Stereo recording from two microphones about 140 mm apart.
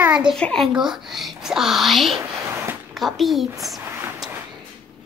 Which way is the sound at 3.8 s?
15° right (ahead or behind).